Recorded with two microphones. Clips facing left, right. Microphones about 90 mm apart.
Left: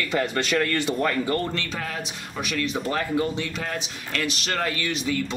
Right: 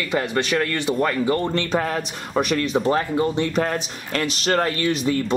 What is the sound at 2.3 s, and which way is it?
Speech, 50° right (ahead or behind).